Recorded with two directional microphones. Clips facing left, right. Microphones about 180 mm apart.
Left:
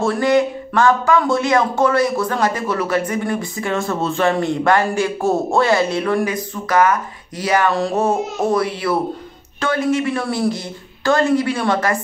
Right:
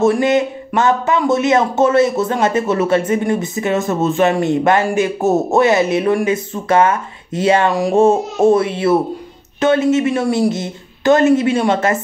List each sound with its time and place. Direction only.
0.0 s speech: 20° right (ahead or behind)